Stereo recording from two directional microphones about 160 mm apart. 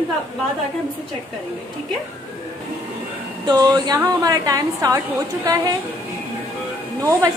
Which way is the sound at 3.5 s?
25° right (ahead or behind).